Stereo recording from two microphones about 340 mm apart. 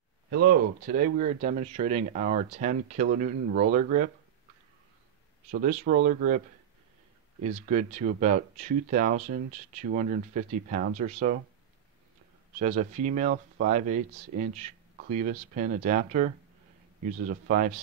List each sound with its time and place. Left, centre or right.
0.3 s speech: right
5.5 s speech: right
7.4 s speech: centre
12.5 s speech: right